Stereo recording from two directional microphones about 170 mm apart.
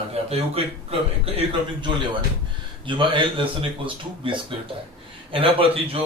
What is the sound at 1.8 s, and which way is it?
A man's voice, 25° right (ahead or behind).